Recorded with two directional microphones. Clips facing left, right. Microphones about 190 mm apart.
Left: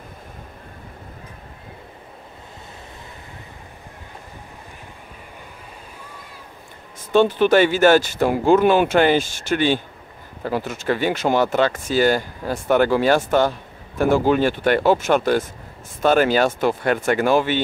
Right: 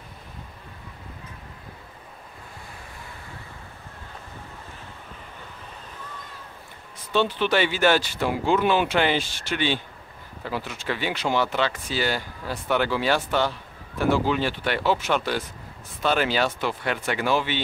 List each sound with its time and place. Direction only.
7.1 s speech: 45° left (ahead or behind)